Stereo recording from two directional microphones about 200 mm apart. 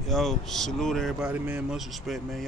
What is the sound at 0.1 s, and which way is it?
Speech, centre (ahead or behind).